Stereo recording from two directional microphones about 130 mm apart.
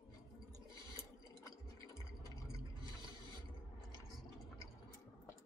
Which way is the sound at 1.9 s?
25° left (ahead or behind).